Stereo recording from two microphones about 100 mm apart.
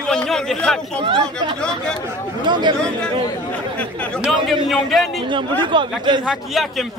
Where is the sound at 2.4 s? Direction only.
50° right (ahead or behind).